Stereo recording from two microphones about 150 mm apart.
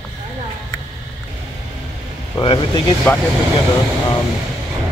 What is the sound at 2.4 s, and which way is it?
Speech, 30° left (ahead or behind).